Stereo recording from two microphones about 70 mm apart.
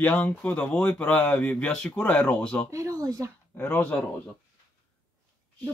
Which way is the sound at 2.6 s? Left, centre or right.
Right.